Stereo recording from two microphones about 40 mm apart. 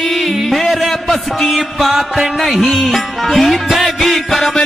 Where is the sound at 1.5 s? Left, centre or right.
Centre.